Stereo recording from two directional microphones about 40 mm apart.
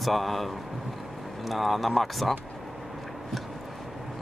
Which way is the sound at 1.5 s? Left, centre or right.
Centre.